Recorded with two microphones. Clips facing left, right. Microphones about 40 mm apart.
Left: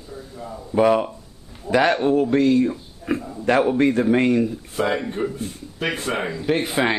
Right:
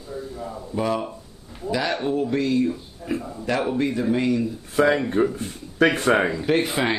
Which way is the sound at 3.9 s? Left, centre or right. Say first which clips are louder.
Left 4 dB; left.